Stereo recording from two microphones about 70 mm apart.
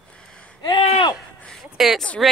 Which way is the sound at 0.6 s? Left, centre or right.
Left.